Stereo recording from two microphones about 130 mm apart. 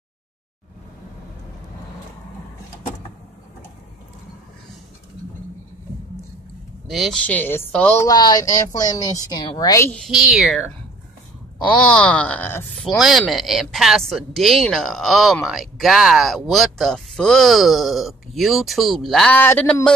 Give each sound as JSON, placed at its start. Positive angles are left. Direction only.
{"t": 6.9, "sound": "speech", "side_deg": 0}
{"t": 7.2, "sound": "a woman's voice", "side_deg": 15}
{"t": 8.0, "sound": "a woman's voice", "side_deg": 30}
{"t": 9.8, "sound": "speech", "side_deg": 5}
{"t": 12.0, "sound": "a woman's voice", "side_deg": 10}
{"t": 12.8, "sound": "speech", "side_deg": 0}
{"t": 19.3, "sound": "a woman's voice", "side_deg": 15}